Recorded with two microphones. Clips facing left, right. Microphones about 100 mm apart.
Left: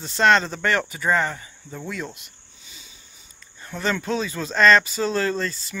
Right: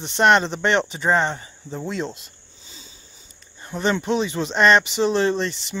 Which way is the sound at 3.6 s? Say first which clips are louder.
Right 3 dB; 20° right (ahead or behind).